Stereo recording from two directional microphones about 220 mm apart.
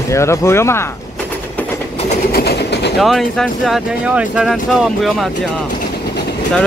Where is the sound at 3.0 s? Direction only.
Centre (ahead or behind).